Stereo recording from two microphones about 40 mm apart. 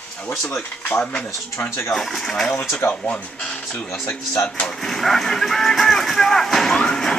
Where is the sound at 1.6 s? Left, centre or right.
Left.